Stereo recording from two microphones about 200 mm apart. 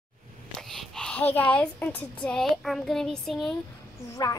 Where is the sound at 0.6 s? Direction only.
Centre (ahead or behind).